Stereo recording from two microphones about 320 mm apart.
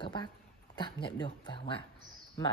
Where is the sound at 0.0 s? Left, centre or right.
Centre.